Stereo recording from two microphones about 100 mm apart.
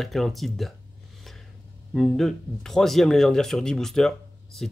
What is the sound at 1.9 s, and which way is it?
Speech, 5° left (ahead or behind).